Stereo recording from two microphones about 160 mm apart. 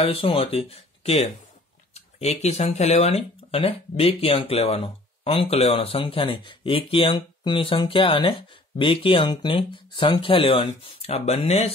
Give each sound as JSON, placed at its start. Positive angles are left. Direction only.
{"t": 0.0, "sound": "speech", "side_deg": 35}